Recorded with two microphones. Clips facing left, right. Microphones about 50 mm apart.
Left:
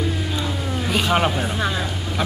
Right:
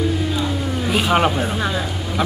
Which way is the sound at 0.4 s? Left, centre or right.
Centre.